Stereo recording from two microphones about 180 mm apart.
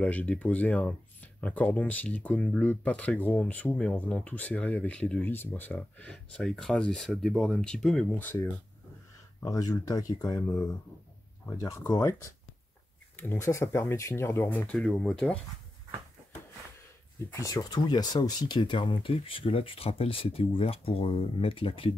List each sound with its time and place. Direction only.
0.0 s speech: 10° left (ahead or behind)
9.4 s speech: 20° left (ahead or behind); by 15.3 s 5° left (ahead or behind)
17.4 s speech: 20° left (ahead or behind)